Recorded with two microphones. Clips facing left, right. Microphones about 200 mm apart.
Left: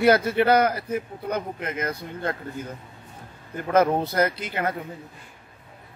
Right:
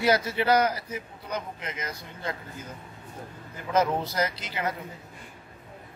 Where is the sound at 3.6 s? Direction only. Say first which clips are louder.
Left 5 dB; 60° left (ahead or behind).